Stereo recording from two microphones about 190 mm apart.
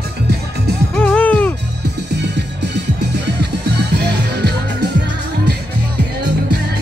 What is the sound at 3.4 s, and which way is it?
Music, 60° right (ahead or behind).